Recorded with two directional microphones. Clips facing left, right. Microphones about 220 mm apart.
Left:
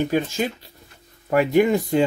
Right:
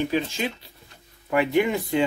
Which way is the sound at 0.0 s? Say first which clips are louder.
Left 3 dB; 45° left (ahead or behind).